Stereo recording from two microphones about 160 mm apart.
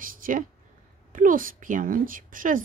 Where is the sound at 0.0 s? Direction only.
60° right (ahead or behind).